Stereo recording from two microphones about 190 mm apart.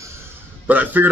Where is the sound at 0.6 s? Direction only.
10° right (ahead or behind).